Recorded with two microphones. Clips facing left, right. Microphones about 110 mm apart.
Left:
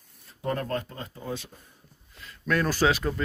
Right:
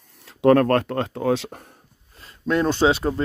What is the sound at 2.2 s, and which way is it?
Speech, 25° right (ahead or behind).